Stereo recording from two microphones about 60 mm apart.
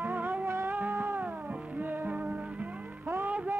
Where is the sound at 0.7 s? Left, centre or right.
Right.